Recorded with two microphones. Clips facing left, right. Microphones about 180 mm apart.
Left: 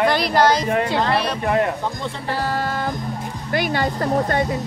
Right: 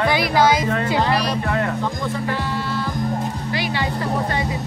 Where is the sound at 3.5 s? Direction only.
50° left (ahead or behind).